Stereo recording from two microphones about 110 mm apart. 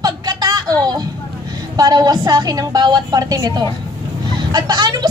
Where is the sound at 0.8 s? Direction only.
35° right (ahead or behind).